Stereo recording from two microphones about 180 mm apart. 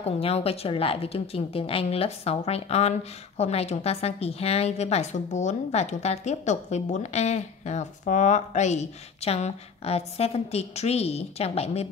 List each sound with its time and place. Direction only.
0.0 s a woman's voice: 35° left (ahead or behind)